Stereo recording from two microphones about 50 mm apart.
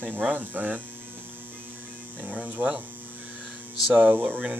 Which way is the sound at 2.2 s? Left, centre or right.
Right.